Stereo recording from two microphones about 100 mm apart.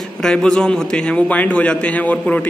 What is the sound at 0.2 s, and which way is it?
A man's voice, 5° left (ahead or behind).